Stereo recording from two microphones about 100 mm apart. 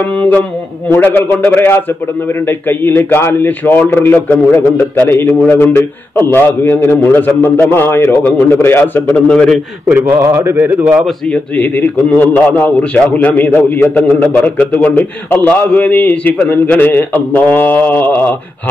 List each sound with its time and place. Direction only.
0.8 s a man's voice: 20° left (ahead or behind)
9.8 s a man's voice: 20° right (ahead or behind)
11.1 s a man's voice: 15° left (ahead or behind)